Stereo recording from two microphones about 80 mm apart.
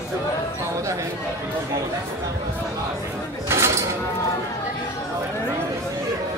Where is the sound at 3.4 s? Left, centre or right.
Right.